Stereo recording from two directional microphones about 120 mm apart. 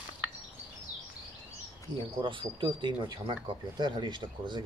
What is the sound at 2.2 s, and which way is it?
Speech, 45° right (ahead or behind).